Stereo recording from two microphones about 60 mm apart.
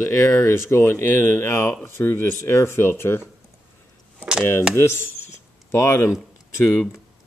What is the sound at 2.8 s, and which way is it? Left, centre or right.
Speech, left.